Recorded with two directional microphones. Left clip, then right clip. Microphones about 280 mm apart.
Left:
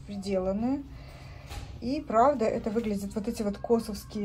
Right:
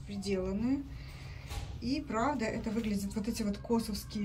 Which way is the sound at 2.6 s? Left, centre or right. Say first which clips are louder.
Left 6 dB; centre.